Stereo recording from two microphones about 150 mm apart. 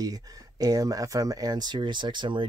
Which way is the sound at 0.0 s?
25° right (ahead or behind).